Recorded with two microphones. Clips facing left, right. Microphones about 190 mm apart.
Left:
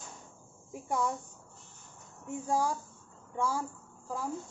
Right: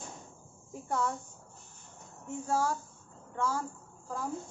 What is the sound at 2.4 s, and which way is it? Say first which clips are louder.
Speech: even; 15° left (ahead or behind).